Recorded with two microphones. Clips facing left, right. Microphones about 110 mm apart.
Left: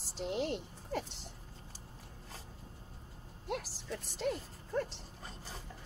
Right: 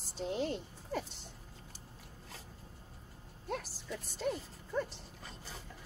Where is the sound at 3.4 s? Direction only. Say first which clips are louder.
Left 1 dB; 75° left (ahead or behind).